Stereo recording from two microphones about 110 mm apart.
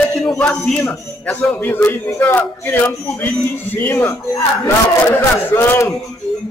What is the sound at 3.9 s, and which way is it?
Speech, 30° left (ahead or behind).